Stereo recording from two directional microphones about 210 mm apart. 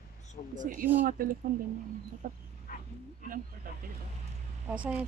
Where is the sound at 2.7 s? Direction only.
40° left (ahead or behind).